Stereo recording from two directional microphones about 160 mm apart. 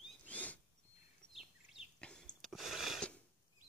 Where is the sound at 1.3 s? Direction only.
5° right (ahead or behind).